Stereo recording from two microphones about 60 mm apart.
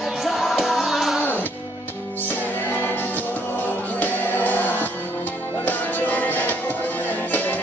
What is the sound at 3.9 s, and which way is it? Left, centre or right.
Music, left.